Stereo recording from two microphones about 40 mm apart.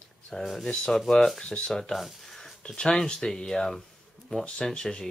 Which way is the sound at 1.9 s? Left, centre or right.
Centre.